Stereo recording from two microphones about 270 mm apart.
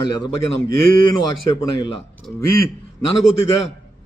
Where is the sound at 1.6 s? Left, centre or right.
Centre.